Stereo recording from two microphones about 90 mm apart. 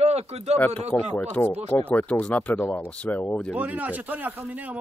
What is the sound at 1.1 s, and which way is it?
Speech, 20° left (ahead or behind).